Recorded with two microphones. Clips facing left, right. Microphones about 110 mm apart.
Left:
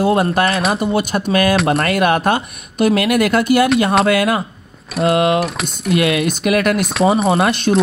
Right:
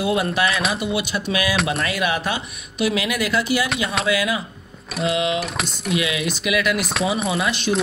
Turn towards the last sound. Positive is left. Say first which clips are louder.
# left 7 dB
turn(degrees=50)  # may be behind; listen again after turning